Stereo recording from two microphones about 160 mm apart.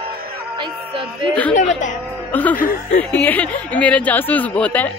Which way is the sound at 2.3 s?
10° left (ahead or behind).